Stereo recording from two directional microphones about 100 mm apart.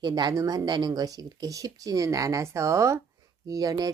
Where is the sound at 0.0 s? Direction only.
45° right (ahead or behind).